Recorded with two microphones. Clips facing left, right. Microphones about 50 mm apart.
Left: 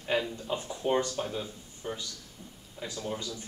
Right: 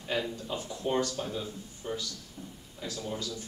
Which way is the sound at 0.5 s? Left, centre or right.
Left.